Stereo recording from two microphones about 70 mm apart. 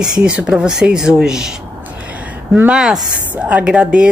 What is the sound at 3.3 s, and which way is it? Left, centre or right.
Speech, right.